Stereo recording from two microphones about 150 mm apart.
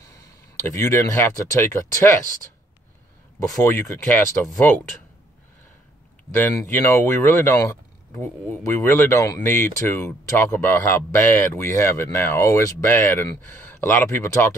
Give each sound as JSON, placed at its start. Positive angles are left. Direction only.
{"t": 0.6, "sound": "speech", "side_deg": 20}
{"t": 3.3, "sound": "speech", "side_deg": 20}
{"t": 6.3, "sound": "speech", "side_deg": 15}